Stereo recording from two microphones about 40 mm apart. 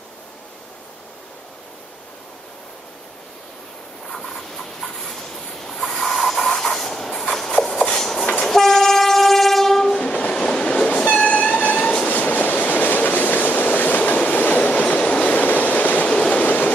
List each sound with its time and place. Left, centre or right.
4.3 s train: centre
10.3 s train: left
11.1 s train: left